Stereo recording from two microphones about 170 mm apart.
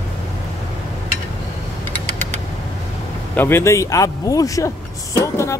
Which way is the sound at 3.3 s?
15° left (ahead or behind).